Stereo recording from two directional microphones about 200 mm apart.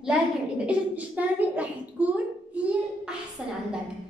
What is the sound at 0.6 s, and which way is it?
A woman's voice, 10° right (ahead or behind).